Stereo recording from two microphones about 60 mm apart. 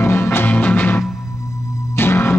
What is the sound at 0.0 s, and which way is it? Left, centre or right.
Music, left.